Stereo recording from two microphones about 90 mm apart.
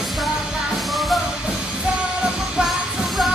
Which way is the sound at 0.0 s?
Centre (ahead or behind).